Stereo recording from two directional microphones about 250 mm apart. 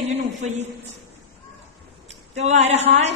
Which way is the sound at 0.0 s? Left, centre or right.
Right.